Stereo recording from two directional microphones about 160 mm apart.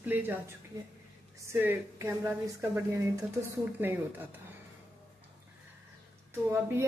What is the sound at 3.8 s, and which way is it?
Speech, 10° right (ahead or behind).